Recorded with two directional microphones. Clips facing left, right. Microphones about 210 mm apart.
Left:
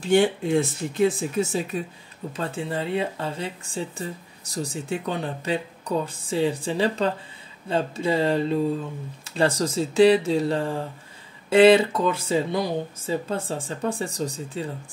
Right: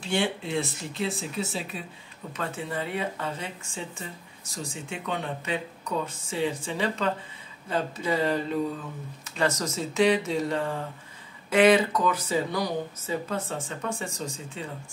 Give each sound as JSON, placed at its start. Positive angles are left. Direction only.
{"t": 0.1, "sound": "speech", "side_deg": 45}
{"t": 2.3, "sound": "speech", "side_deg": 30}
{"t": 4.8, "sound": "speech", "side_deg": 35}